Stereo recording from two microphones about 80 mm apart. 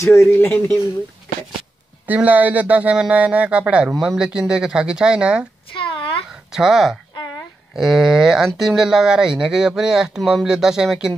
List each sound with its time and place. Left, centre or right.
0.0 s speech: left
2.0 s speech: centre
5.8 s a sound: left
6.5 s speech: centre